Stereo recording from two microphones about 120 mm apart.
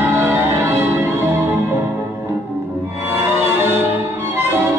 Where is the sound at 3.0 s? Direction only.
20° right (ahead or behind).